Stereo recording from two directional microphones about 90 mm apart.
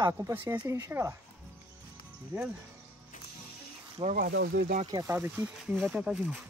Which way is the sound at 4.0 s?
75° right (ahead or behind).